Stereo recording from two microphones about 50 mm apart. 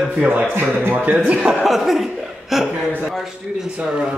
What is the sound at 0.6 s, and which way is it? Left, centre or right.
Speech, right.